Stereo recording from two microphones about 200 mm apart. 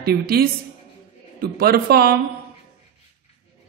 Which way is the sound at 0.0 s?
50° right (ahead or behind).